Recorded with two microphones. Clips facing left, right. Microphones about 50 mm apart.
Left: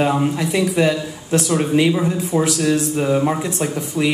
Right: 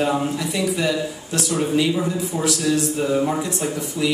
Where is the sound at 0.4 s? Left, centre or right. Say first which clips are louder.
Left 5 dB; left.